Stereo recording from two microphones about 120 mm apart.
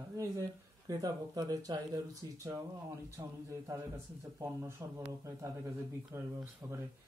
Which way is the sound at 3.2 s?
30° right (ahead or behind).